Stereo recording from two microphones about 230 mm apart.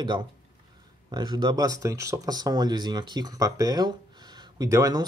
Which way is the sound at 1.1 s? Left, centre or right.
Centre.